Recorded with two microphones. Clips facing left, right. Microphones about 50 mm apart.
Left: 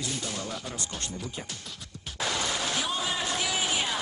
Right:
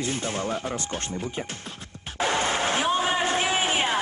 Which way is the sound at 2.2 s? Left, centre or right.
Right.